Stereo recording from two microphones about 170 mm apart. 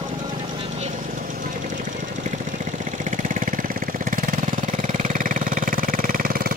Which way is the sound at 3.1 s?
50° right (ahead or behind).